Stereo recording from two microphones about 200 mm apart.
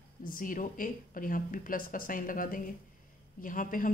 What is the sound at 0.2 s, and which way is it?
A woman's voice, 45° left (ahead or behind).